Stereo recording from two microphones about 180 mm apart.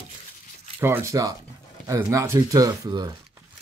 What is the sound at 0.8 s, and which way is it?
Speech, 15° right (ahead or behind).